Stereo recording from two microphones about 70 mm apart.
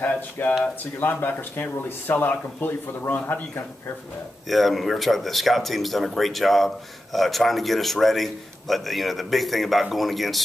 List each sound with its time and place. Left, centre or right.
0.0 s speech: left
4.5 s speech: centre